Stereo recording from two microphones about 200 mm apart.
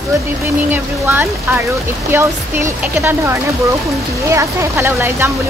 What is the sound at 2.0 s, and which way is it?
Speech, 10° right (ahead or behind).